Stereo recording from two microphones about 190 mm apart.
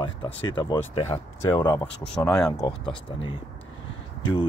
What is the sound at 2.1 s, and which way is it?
Speech, 5° left (ahead or behind).